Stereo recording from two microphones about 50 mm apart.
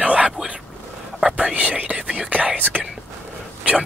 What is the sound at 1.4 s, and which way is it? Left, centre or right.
Whispering, right.